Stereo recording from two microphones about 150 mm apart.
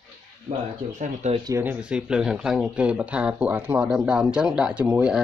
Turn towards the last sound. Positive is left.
turn(degrees=-10)  # may be behind; listen again after turning